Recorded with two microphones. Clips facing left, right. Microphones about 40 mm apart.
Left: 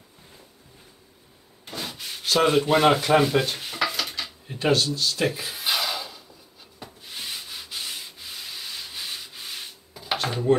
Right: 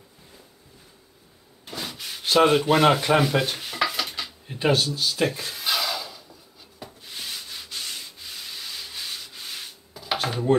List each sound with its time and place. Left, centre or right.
1.7 s rub: centre
2.2 s rub: centre
2.5 s rub: centre
4.5 s speech: centre
5.2 s a sound: centre
6.8 s sanding: centre
10.2 s a sound: centre